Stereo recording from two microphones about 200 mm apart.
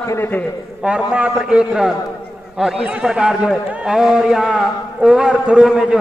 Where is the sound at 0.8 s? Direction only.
5° right (ahead or behind).